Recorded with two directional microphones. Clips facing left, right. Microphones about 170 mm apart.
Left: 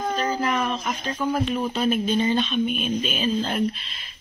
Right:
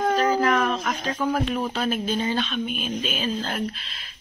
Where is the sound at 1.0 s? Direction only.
Centre (ahead or behind).